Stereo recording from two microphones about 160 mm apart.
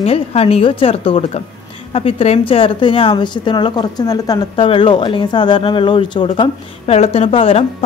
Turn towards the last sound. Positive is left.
turn(degrees=35)  # may be behind; listen again after turning